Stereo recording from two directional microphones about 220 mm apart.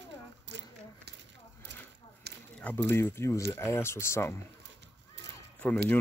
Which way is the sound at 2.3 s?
50° right (ahead or behind).